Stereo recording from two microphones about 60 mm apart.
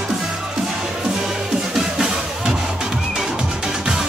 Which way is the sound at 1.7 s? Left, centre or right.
Centre.